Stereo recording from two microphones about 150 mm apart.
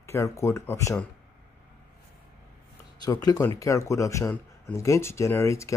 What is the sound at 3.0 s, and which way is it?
Speech, 25° left (ahead or behind).